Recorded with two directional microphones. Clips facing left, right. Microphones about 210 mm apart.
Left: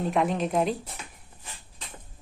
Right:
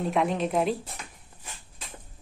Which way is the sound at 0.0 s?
Centre (ahead or behind).